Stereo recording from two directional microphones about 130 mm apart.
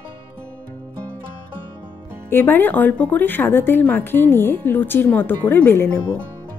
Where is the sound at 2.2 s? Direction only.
15° left (ahead or behind).